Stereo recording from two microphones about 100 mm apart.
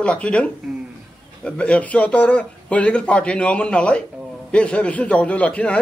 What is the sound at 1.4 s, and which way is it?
A man's voice, 10° left (ahead or behind).